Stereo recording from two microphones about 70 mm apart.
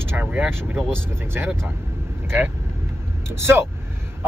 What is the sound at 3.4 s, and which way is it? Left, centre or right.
Speech, right.